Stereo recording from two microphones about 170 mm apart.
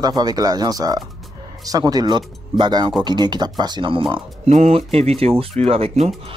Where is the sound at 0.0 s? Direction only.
25° right (ahead or behind).